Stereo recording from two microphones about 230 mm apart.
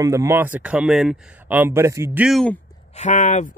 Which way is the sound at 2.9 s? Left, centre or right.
Left.